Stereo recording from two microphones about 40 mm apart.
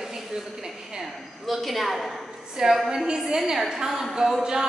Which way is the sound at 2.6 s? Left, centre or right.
Centre.